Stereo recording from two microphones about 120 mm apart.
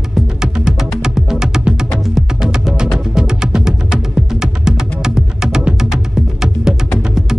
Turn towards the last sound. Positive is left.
turn(degrees=0)  # may be behind; listen again after turning